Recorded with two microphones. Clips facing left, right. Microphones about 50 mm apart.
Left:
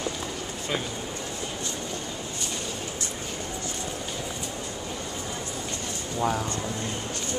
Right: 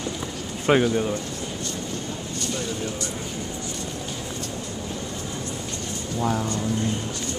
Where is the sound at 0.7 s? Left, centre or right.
Right.